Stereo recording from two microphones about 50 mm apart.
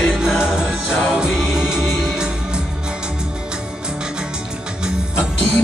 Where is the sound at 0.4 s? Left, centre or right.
Centre.